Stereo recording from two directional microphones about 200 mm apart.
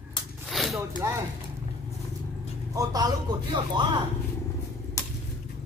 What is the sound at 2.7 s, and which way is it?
A man's voice, 15° right (ahead or behind).